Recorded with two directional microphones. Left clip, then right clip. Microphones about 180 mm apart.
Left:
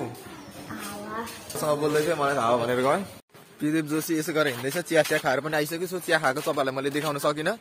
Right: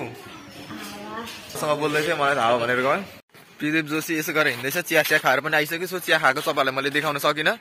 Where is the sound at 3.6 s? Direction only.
5° left (ahead or behind).